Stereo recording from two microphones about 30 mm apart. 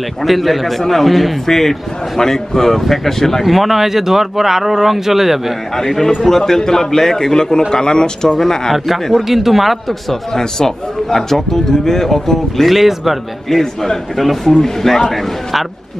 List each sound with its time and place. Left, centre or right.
0.2 s a man's voice: centre
3.4 s speech: centre
5.8 s a man's voice: centre
8.4 s a man's voice: centre
8.8 s speech: centre
10.3 s a man's voice: centre
12.6 s a man's voice: centre